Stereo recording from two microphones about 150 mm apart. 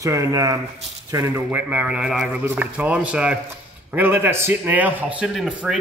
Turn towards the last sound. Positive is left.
turn(degrees=-5)  # may be behind; listen again after turning